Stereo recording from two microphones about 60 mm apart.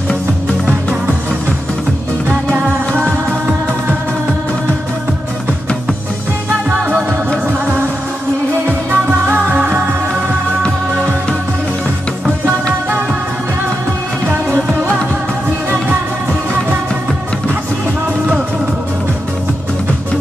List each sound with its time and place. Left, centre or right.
2.2 s music: right
6.7 s music: right
8.9 s music: right
14.5 s music: right